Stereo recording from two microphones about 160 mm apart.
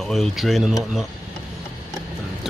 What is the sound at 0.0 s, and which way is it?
Speech, centre (ahead or behind).